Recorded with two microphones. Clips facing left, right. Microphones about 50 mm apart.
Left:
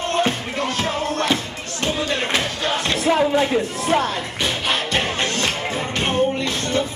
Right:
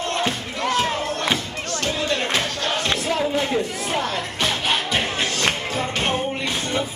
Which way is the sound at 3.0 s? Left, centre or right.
Left.